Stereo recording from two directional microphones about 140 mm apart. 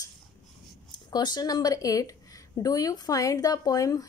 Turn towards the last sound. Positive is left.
turn(degrees=25)  # may be behind; listen again after turning